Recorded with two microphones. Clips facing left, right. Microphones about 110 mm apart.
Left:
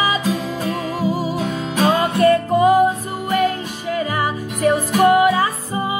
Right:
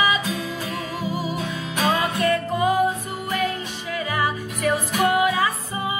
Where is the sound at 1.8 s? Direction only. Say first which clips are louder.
Left 6 dB; 40° left (ahead or behind).